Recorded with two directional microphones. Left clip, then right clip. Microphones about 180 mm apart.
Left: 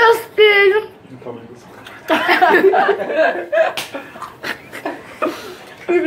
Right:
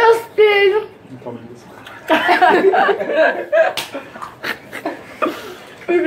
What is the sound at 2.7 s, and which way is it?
Speech, centre (ahead or behind).